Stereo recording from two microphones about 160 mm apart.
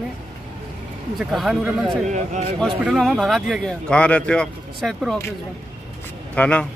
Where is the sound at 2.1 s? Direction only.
50° right (ahead or behind).